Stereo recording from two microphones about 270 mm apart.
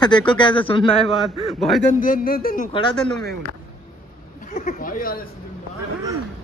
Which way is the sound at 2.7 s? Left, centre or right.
Centre.